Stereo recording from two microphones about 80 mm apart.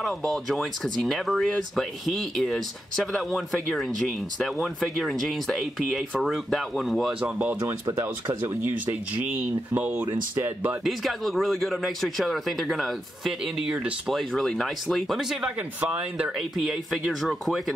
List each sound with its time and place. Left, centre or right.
0.0 s speech: centre
7.2 s speech: centre
7.6 s speech: right
10.8 s speech: centre
14.1 s speech: centre